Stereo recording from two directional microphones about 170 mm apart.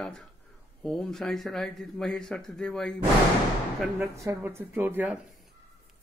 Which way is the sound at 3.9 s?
15° right (ahead or behind).